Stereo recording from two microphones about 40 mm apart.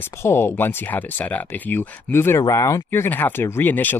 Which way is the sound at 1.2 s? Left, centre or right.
Left.